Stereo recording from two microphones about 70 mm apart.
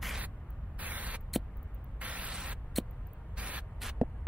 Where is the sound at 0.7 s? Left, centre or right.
Right.